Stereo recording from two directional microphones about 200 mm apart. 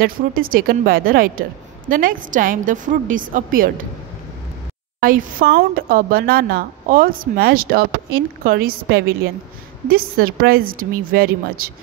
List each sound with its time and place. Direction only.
0.0 s a woman's voice: 45° right (ahead or behind)
5.0 s a woman's voice: 45° right (ahead or behind)